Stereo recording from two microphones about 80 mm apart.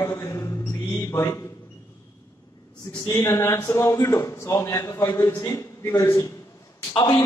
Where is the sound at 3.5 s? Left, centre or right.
Left.